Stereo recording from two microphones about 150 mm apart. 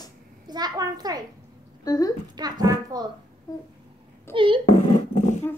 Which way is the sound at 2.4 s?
25° right (ahead or behind).